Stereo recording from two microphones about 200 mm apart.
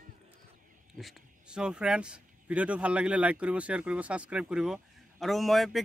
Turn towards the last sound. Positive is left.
turn(degrees=0)  # may be behind; listen again after turning